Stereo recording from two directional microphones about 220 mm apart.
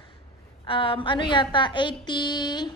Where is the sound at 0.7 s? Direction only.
25° left (ahead or behind).